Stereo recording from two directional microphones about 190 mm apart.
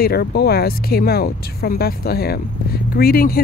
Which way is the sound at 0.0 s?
55° left (ahead or behind).